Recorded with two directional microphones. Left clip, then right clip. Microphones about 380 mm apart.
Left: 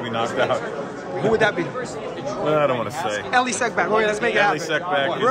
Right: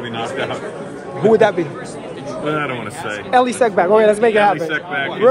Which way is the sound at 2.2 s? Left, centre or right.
Centre.